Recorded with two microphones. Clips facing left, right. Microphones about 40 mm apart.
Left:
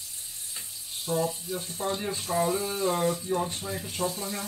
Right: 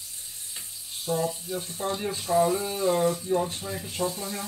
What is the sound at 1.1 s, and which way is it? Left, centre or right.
Speech, centre.